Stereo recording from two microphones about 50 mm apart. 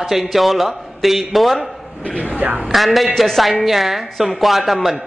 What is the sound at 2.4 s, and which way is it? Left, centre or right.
Speech, right.